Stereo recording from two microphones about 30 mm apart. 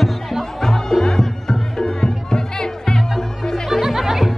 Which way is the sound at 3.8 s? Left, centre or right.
Centre.